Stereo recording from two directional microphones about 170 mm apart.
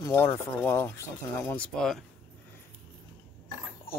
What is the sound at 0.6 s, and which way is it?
Speech, 15° left (ahead or behind).